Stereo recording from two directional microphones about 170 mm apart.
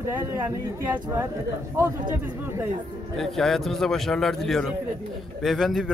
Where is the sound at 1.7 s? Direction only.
15° right (ahead or behind).